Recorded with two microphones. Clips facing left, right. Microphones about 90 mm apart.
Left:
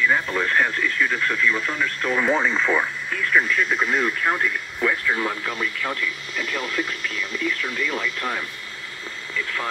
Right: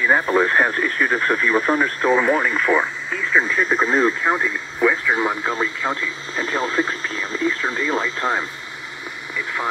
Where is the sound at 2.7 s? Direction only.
15° right (ahead or behind).